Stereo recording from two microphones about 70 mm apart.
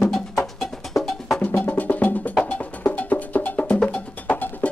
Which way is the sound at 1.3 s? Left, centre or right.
Left.